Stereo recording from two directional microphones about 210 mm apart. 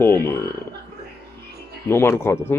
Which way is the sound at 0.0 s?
10° left (ahead or behind).